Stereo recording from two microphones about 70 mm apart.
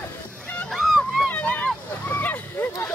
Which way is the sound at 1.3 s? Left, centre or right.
Left.